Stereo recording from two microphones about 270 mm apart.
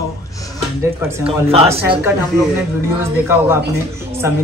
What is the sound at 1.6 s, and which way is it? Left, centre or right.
Speech, centre.